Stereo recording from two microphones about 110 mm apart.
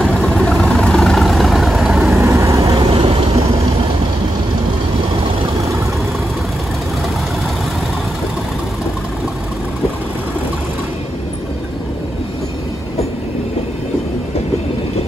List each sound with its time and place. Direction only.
0.0 s vehicle: 5° left (ahead or behind)
2.0 s vehicle: 25° right (ahead or behind)
2.6 s vehicle: 55° right (ahead or behind)